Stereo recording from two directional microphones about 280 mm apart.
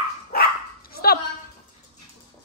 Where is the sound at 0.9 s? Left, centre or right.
Left.